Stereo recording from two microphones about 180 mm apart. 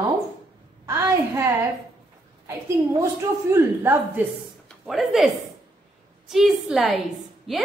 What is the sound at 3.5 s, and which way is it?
Speech, 15° right (ahead or behind).